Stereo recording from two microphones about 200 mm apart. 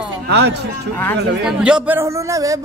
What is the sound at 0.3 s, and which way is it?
Speech, 55° right (ahead or behind).